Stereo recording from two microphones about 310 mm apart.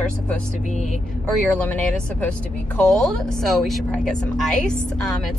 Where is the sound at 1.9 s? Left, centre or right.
Centre.